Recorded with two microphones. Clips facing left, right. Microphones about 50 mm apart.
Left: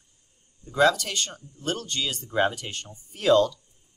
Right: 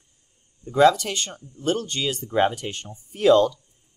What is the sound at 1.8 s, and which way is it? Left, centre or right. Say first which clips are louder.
Speech: right 4 dB; right.